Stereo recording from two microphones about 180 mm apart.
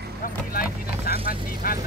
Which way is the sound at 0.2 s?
55° left (ahead or behind).